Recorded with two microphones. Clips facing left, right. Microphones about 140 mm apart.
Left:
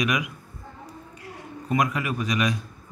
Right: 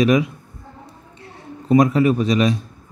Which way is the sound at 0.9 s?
25° right (ahead or behind).